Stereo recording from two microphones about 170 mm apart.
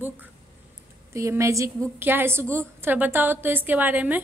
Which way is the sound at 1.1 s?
15° right (ahead or behind).